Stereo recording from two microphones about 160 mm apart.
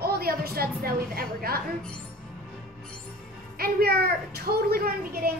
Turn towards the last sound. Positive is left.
turn(degrees=-65)  # may be behind; listen again after turning